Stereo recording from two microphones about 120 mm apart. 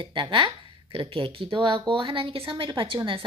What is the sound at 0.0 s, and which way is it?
A woman's voice, 45° right (ahead or behind).